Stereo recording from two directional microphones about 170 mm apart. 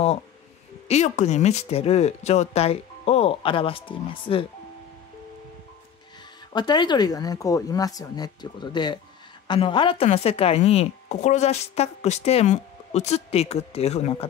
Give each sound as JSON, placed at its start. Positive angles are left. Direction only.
{"t": 0.8, "sound": "a woman's voice", "side_deg": 40}
{"t": 6.5, "sound": "a woman's voice", "side_deg": 25}